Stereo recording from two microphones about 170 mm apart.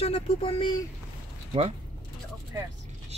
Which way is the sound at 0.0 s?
35° left (ahead or behind).